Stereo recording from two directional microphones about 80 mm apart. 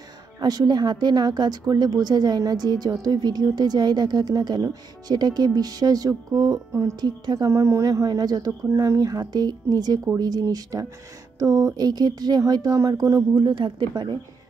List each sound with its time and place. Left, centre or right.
0.4 s speech: right
6.7 s speech: right
7.0 s speech: right
7.4 s speech: right
13.4 s speech: right